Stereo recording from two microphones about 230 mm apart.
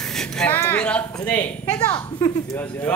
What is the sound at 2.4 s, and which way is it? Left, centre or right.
Speech, centre.